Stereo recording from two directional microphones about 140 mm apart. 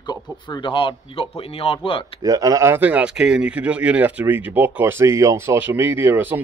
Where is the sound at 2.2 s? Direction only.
25° right (ahead or behind).